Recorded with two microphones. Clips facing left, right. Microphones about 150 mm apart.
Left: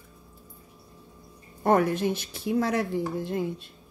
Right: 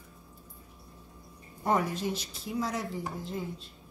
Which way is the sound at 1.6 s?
60° left (ahead or behind).